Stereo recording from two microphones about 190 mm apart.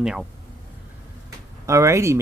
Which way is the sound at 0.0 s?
5° right (ahead or behind).